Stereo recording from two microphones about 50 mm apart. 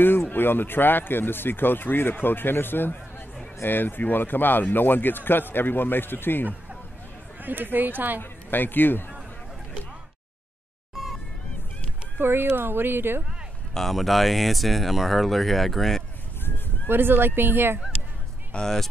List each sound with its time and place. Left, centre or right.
0.3 s speech: left
7.4 s speech: right
8.2 s a man's voice: left
12.2 s speech: right
13.7 s speech: centre
16.4 s a sound: left
16.9 s speech: right
18.5 s speech: centre